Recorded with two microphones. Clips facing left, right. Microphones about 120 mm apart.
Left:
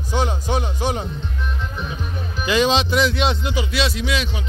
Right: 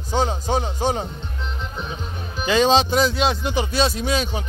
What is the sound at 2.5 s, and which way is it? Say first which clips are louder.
Speech: right 1 dB; 35° right (ahead or behind).